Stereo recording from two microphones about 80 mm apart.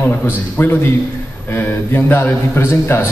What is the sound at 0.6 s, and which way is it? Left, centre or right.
A man's voice, left.